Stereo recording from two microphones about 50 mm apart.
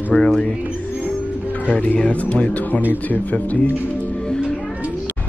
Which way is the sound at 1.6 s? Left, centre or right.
Left.